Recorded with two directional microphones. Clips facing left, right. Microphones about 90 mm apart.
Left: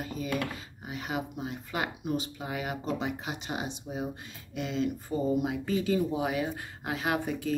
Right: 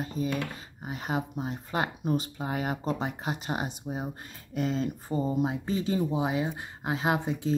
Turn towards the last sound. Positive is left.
turn(degrees=-25)  # may be behind; listen again after turning